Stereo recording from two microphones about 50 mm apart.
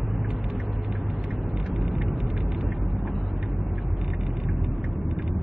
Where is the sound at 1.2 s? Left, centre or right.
Right.